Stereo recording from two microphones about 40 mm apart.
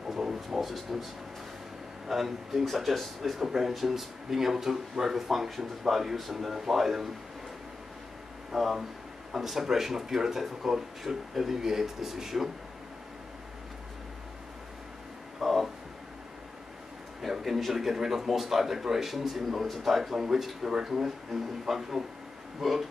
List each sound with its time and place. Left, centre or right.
0.1 s a sound: centre
2.0 s a man's voice: centre
3.4 s speech: centre
8.5 s speech: centre
15.4 s a sound: centre
17.2 s a man's voice: centre